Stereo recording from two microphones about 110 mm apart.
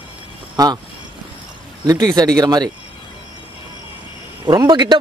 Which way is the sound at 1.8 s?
35° right (ahead or behind).